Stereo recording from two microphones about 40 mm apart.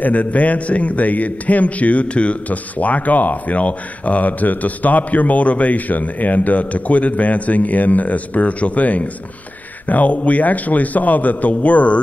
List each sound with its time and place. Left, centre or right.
0.0 s a man's voice: left